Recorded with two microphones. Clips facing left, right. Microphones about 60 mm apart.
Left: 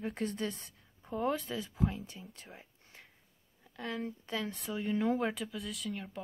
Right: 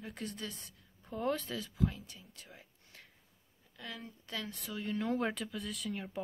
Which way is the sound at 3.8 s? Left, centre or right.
Left.